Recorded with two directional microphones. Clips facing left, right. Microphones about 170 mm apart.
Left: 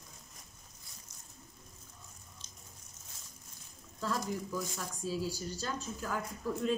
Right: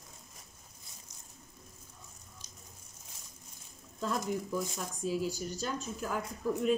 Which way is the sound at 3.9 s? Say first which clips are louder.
Right 2 dB; 20° right (ahead or behind).